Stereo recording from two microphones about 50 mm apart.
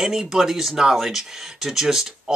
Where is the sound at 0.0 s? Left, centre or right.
Centre.